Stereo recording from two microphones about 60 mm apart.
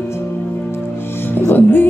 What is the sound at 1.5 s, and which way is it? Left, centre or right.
Music, left.